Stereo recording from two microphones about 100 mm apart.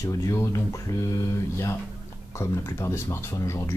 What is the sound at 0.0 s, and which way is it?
Speech, 35° left (ahead or behind).